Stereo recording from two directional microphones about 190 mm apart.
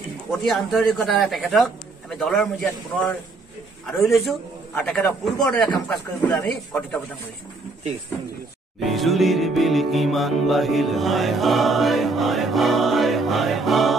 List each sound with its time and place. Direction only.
0.3 s music: centre (ahead or behind)
5.9 s speech: 5° left (ahead or behind)
8.8 s music: centre (ahead or behind)